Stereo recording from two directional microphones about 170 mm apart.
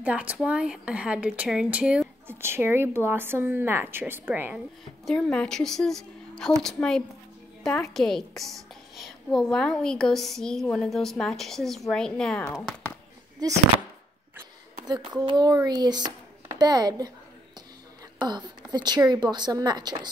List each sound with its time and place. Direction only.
0.0 s speech: 5° right (ahead or behind)
5.0 s a woman's voice: 5° left (ahead or behind)
13.4 s speech: 25° right (ahead or behind)
14.9 s speech: 25° right (ahead or behind)
18.7 s speech: 25° right (ahead or behind)